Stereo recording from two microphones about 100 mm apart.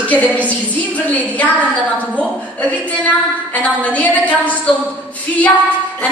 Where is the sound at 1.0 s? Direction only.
15° left (ahead or behind).